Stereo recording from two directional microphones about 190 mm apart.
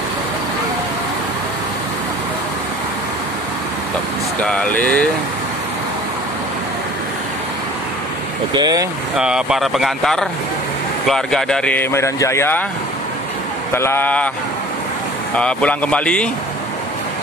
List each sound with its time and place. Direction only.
4.4 s speech: 5° left (ahead or behind)
8.5 s speech: 20° right (ahead or behind)
9.1 s speech: 5° right (ahead or behind); by 12.6 s 10° left (ahead or behind)
13.7 s speech: 10° left (ahead or behind)
15.3 s speech: 5° left (ahead or behind)